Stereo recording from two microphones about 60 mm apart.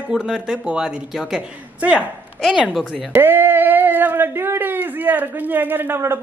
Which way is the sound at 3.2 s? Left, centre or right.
Right.